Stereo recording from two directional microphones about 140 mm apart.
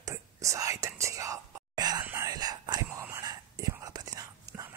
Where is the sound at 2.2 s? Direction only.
30° right (ahead or behind).